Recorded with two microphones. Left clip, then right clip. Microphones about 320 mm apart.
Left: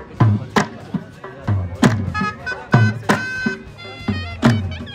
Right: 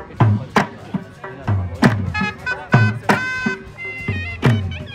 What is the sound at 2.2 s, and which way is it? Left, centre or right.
Music, centre.